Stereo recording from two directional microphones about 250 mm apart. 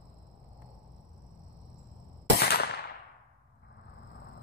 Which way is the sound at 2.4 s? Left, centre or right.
Left.